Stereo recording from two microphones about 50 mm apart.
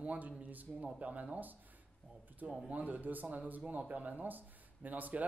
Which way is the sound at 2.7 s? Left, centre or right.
Right.